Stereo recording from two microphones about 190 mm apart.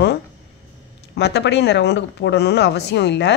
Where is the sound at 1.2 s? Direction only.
65° left (ahead or behind).